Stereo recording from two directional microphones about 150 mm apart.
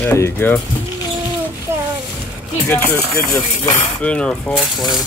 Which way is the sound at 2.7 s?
15° left (ahead or behind).